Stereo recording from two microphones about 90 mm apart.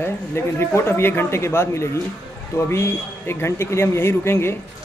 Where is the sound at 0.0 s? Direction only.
25° left (ahead or behind).